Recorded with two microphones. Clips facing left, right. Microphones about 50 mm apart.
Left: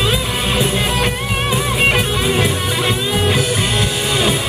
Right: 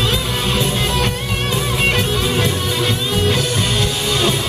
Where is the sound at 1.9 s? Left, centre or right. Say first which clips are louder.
Left 2 dB; centre.